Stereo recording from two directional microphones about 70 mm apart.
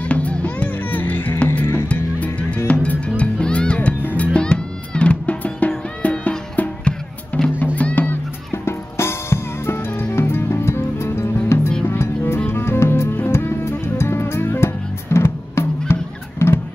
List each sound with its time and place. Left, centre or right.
0.0 s music: centre
8.6 s drum kit: left
10.1 s music: left